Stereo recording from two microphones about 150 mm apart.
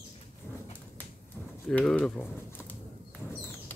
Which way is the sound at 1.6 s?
5° left (ahead or behind).